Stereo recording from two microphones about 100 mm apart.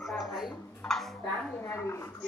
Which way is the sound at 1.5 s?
25° left (ahead or behind).